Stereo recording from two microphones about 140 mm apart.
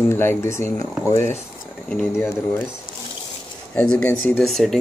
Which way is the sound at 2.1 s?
20° left (ahead or behind).